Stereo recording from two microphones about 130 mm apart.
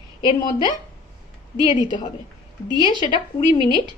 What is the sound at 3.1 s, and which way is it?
Speech, 40° left (ahead or behind).